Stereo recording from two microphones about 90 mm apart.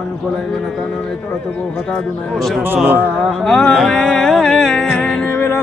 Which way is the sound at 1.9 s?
Centre (ahead or behind).